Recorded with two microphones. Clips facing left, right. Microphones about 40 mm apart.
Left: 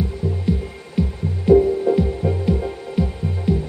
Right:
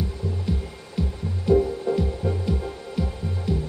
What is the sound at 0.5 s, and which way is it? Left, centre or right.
Music, centre.